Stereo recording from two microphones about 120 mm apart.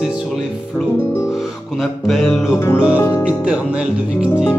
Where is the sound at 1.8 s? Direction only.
Centre (ahead or behind).